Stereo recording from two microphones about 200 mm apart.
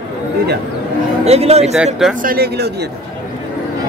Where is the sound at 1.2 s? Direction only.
30° right (ahead or behind).